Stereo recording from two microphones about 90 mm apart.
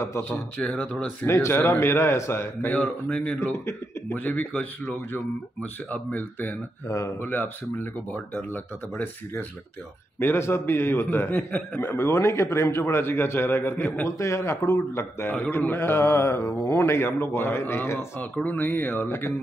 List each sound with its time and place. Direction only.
0.3 s speech: 15° left (ahead or behind)
1.3 s speech: 30° left (ahead or behind)
3.3 s speech: 30° left (ahead or behind)
4.4 s speech: 15° left (ahead or behind)
6.9 s speech: 35° left (ahead or behind)
7.2 s speech: 25° left (ahead or behind)
11.9 s speech: 30° left (ahead or behind)
14.0 s speech: 35° left (ahead or behind)